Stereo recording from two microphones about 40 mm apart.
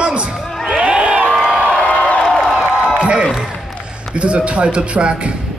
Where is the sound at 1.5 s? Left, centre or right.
Left.